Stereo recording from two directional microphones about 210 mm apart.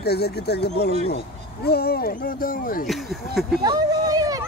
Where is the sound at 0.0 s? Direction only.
50° left (ahead or behind).